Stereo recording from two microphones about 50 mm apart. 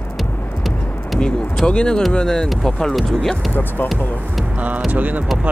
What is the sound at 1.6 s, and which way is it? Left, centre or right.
Speech, centre.